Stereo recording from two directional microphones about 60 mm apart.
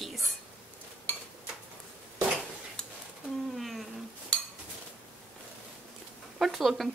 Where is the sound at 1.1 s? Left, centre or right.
Left.